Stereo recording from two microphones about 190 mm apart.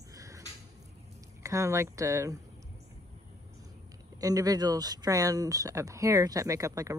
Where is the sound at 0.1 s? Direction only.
15° right (ahead or behind).